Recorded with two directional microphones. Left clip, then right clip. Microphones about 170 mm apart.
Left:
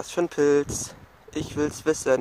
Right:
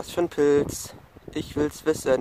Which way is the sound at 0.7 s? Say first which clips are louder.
Left 3 dB; 60° right (ahead or behind).